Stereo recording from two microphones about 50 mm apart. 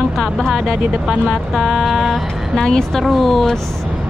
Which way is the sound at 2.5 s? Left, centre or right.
Centre.